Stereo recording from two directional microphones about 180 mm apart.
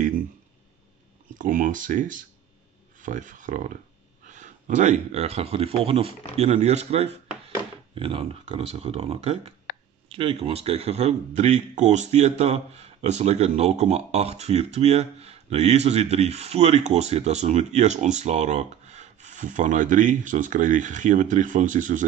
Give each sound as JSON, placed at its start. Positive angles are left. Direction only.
{"t": 1.4, "sound": "speech", "side_deg": -45}
{"t": 9.7, "sound": "a sound", "side_deg": 60}
{"t": 10.0, "sound": "speech", "side_deg": -30}